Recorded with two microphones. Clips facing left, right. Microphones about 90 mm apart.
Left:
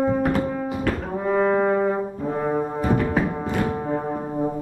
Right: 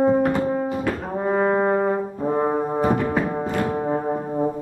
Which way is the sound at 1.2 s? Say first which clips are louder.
Even; 35° right (ahead or behind).